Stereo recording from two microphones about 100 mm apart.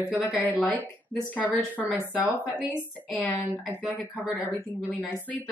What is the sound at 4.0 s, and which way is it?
Speech, 15° left (ahead or behind).